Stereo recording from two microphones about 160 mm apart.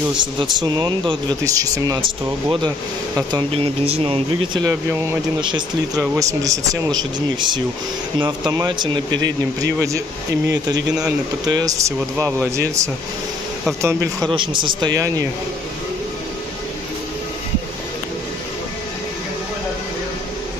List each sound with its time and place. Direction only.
0.2 s speech: 30° right (ahead or behind)
3.2 s speech: 25° right (ahead or behind)
6.1 s speech: 20° right (ahead or behind)
11.4 s speech: 25° right (ahead or behind)
14.3 s speech: 30° right (ahead or behind)